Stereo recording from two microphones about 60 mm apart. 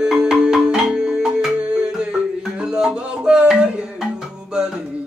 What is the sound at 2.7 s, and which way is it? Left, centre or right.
Music, centre.